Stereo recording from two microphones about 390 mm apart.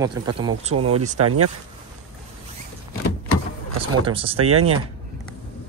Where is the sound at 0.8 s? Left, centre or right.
Right.